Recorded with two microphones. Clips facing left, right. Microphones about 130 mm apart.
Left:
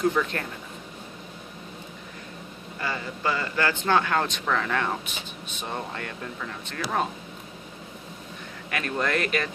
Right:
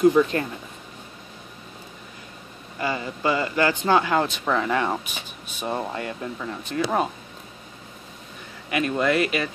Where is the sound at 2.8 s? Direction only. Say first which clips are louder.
Right 4 dB; 15° right (ahead or behind).